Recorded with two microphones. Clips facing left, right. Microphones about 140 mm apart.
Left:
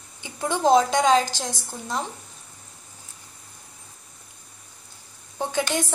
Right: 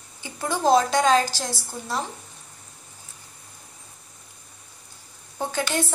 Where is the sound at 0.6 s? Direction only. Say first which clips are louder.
Left 1 dB; 20° left (ahead or behind).